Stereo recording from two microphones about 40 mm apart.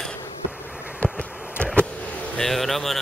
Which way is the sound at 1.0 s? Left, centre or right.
Left.